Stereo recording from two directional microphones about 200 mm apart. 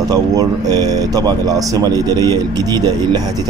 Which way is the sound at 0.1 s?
20° right (ahead or behind).